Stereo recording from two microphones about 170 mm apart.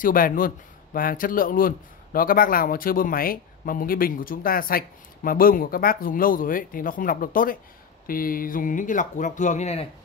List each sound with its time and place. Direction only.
0.0 s speech: 55° left (ahead or behind)